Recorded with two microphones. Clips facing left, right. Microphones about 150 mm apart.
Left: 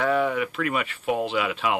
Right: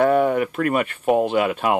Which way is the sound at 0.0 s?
50° right (ahead or behind).